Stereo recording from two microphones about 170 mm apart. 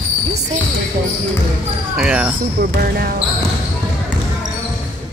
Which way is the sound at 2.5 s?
60° right (ahead or behind).